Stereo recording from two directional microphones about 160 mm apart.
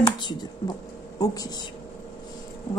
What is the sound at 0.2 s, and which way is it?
A woman's voice, 25° left (ahead or behind).